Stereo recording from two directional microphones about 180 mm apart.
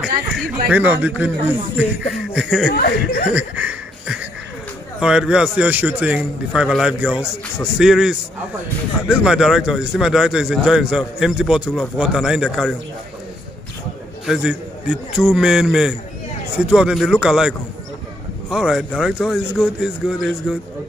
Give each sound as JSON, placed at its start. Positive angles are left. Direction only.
{"t": 0.0, "sound": "speech", "side_deg": -5}
{"t": 2.3, "sound": "a man's voice", "side_deg": -5}
{"t": 2.7, "sound": "speech", "side_deg": 55}
{"t": 3.3, "sound": "a sound", "side_deg": -10}
{"t": 5.0, "sound": "a man's voice", "side_deg": -5}
{"t": 14.2, "sound": "a man's voice", "side_deg": -5}